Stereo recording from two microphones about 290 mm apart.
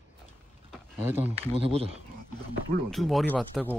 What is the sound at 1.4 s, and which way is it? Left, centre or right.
Speech, centre.